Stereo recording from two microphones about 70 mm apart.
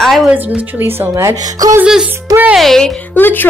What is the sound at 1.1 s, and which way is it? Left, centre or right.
Speech, right.